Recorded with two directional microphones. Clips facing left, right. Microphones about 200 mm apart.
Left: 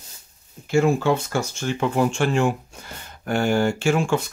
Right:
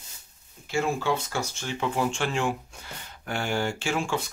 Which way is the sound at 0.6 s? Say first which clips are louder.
Left 8 dB; 50° left (ahead or behind).